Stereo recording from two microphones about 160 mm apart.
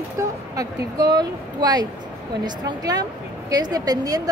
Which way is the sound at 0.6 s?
25° right (ahead or behind).